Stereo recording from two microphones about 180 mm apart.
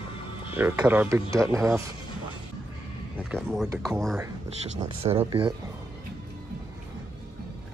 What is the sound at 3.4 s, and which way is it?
Speech, 5° right (ahead or behind).